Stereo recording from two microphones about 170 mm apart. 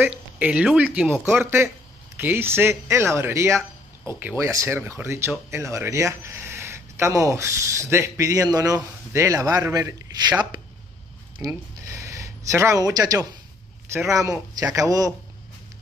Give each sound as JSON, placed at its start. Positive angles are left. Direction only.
{"t": 0.0, "sound": "a man's voice", "side_deg": -10}
{"t": 11.3, "sound": "a sound", "side_deg": -15}
{"t": 14.6, "sound": "a man's voice", "side_deg": -20}